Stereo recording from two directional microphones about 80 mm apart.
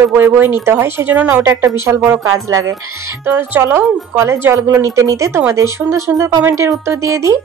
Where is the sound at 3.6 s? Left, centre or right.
Right.